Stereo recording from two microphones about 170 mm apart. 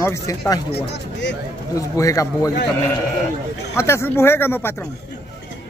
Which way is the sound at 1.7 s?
20° left (ahead or behind).